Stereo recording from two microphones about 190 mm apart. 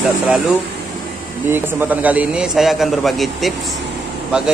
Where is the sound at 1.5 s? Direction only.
10° right (ahead or behind).